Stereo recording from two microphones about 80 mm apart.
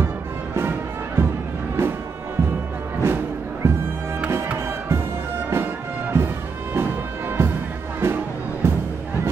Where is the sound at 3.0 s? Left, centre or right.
Right.